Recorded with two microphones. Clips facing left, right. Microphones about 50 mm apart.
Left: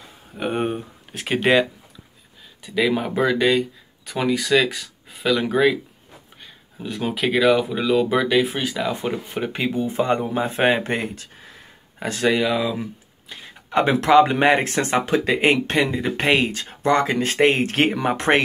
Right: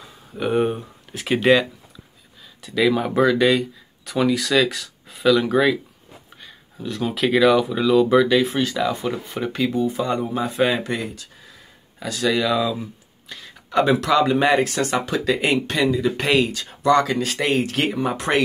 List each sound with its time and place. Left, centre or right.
0.5 s speech: centre
6.4 s a sound: centre
7.2 s speech: centre
8.9 s speech: left
12.4 s speech: left
13.3 s a sound: left
14.0 s speech: left
17.9 s speech: left